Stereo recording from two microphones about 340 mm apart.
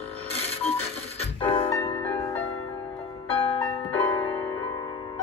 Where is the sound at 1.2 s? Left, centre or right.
Centre.